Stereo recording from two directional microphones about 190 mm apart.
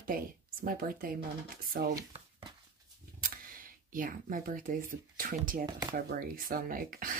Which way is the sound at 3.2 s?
50° right (ahead or behind).